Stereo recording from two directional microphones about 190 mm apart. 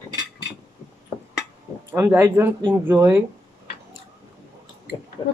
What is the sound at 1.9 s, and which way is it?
Speech, 15° right (ahead or behind).